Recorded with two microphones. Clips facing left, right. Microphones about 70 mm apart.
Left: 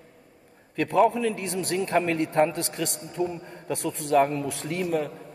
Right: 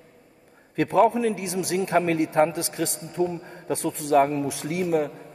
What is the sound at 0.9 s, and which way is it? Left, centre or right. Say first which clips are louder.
Speech: right 1 dB; right.